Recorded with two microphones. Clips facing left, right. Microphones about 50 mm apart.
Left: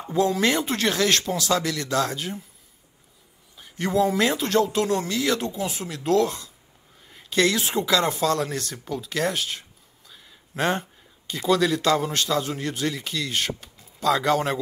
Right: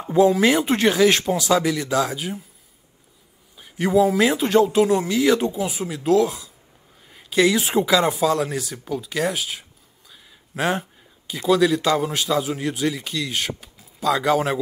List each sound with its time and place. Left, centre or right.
0.3 s speech: centre
0.7 s speech: right; by 2.4 s centre
3.5 s speech: centre